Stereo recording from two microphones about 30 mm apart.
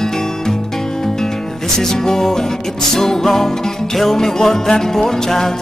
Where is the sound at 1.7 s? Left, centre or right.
Centre.